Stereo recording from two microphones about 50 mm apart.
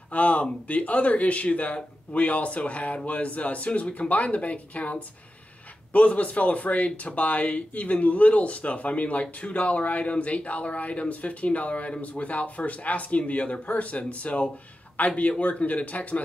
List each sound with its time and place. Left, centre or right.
0.1 s speech: left